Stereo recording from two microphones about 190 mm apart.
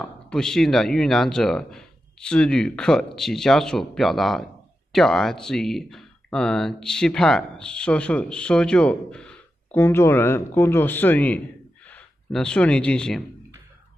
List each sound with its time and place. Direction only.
0.0 s speech: 5° left (ahead or behind)